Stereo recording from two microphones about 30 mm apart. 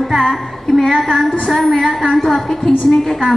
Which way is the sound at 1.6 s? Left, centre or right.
Centre.